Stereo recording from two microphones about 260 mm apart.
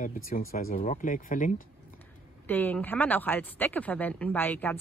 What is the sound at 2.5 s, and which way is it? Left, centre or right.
Speech, centre.